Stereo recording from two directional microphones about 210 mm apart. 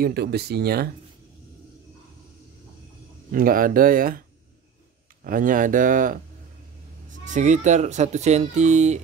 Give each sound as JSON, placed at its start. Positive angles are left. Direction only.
{"t": 0.0, "sound": "speech", "side_deg": -50}
{"t": 3.3, "sound": "speech", "side_deg": -40}
{"t": 5.2, "sound": "speech", "side_deg": -40}
{"t": 7.2, "sound": "speech", "side_deg": -35}